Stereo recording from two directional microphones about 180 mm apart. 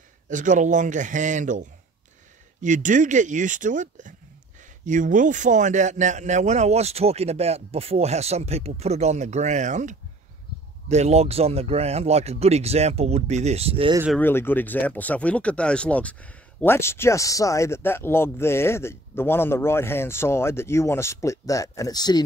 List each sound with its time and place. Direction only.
0.3 s a man's voice: 45° right (ahead or behind)
14.1 s speech: 10° left (ahead or behind)